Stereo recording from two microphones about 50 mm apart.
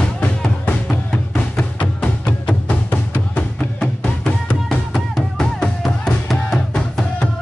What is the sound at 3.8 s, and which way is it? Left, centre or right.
Music, centre.